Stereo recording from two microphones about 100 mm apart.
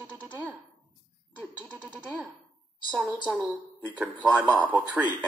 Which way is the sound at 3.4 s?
15° right (ahead or behind).